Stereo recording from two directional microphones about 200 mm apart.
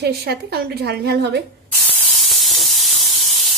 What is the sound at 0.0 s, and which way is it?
A woman's voice, 55° right (ahead or behind).